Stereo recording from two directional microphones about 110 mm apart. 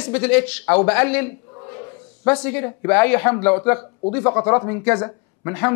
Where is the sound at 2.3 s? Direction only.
10° left (ahead or behind).